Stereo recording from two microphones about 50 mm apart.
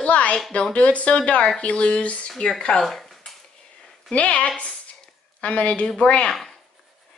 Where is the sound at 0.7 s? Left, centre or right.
Left.